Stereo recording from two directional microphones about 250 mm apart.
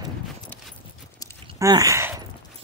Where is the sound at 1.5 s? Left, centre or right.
Centre.